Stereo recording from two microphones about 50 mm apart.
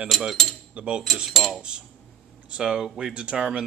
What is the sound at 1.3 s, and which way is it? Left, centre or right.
Cutlery, centre.